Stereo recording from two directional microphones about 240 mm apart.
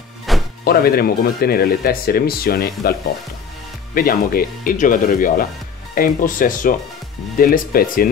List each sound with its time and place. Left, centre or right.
0.3 s music: centre
0.7 s speech: left